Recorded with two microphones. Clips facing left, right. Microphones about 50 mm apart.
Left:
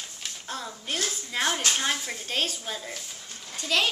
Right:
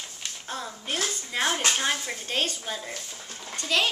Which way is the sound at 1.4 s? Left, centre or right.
Centre.